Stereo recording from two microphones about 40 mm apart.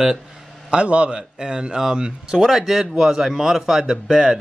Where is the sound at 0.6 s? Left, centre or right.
Right.